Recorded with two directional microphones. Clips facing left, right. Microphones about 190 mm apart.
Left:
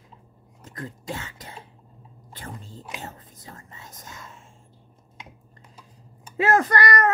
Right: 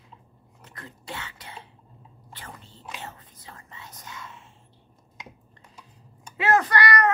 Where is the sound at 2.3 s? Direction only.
45° left (ahead or behind).